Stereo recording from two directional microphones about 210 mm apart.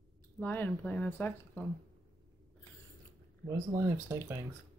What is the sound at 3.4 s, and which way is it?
Speech, 15° right (ahead or behind).